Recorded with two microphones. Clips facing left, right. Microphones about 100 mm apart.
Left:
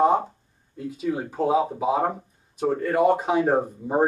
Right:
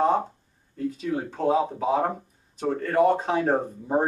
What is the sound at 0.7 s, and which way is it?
Speech, 15° left (ahead or behind).